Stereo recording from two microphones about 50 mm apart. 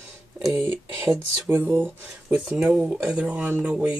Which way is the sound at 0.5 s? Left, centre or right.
Right.